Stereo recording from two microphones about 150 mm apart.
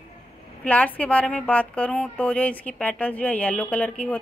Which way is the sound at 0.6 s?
10° left (ahead or behind).